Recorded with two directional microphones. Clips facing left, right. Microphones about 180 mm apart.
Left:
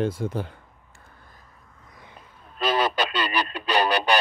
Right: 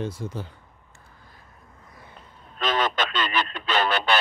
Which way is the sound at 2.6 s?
10° left (ahead or behind).